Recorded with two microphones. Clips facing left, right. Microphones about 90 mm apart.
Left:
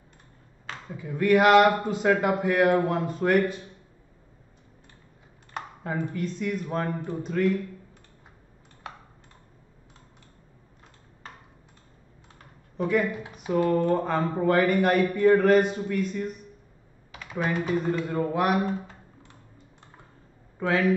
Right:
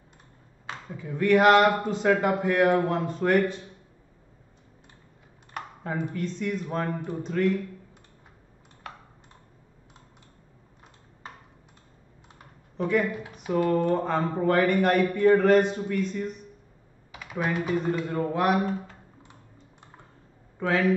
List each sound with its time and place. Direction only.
0.9 s speech: 5° left (ahead or behind)
5.5 s computer keyboard: 20° left (ahead or behind)
6.1 s speech: 5° left (ahead or behind)
8.8 s computer keyboard: 20° left (ahead or behind)
12.7 s speech: 5° left (ahead or behind)
13.3 s typing: 5° left (ahead or behind)
13.9 s speech: 5° left (ahead or behind)
17.1 s speech: 5° right (ahead or behind)
20.5 s a man's voice: centre (ahead or behind)